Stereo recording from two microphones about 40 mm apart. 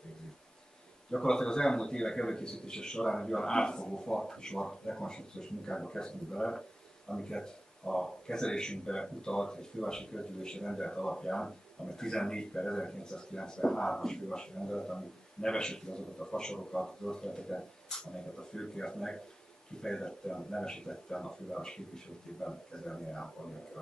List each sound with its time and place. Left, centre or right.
1.1 s speech: centre